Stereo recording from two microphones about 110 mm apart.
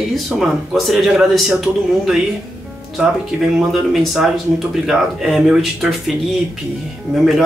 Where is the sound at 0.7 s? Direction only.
Centre (ahead or behind).